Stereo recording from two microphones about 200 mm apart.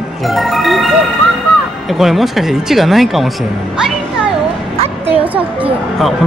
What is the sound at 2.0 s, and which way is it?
Speech, centre (ahead or behind).